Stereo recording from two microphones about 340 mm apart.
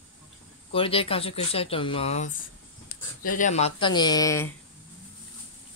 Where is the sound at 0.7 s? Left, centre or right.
Centre.